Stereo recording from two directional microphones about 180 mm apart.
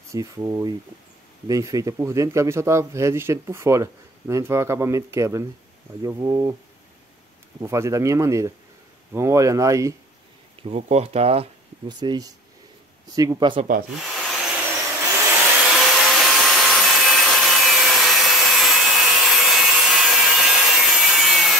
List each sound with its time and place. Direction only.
0.1 s a man's voice: 20° right (ahead or behind)
7.6 s a man's voice: 15° right (ahead or behind)
10.7 s speech: 35° right (ahead or behind)
12.0 s speech: 20° right (ahead or behind)
14.0 s wood: centre (ahead or behind)
15.1 s vacuum cleaner: 5° right (ahead or behind)